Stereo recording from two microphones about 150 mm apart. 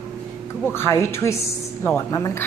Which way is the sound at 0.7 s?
15° left (ahead or behind).